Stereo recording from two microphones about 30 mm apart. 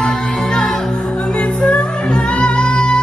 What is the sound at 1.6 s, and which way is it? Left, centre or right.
Music, left.